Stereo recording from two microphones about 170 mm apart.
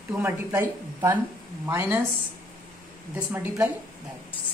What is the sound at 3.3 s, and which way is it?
Speech, 15° right (ahead or behind).